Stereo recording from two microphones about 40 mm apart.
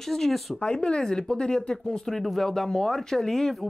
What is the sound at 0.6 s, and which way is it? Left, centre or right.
Speech, left.